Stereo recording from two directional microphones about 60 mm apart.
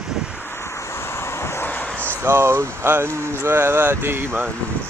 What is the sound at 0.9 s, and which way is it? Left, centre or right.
Vehicle, left.